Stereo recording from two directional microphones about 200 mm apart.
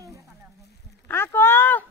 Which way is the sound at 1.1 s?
10° left (ahead or behind).